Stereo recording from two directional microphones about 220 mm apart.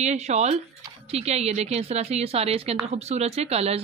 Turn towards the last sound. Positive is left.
turn(degrees=-30)  # may be behind; listen again after turning